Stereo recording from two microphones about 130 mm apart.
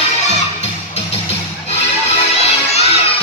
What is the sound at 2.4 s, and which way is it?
Music, 55° left (ahead or behind).